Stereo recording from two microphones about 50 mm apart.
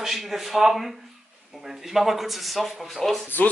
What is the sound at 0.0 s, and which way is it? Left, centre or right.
Speech, centre.